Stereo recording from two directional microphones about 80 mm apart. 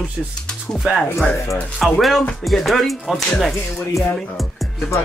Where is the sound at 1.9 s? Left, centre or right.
Centre.